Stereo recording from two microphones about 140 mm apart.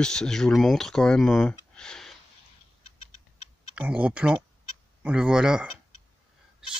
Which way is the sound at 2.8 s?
45° left (ahead or behind).